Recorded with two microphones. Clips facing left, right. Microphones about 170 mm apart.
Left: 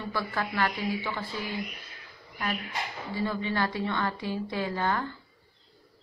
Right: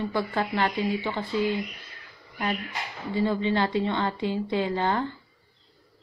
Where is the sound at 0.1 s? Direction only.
20° right (ahead or behind).